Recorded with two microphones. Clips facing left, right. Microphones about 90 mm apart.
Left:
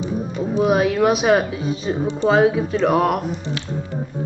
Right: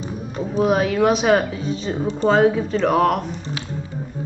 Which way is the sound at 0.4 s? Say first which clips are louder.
Left 1 dB; 5° left (ahead or behind).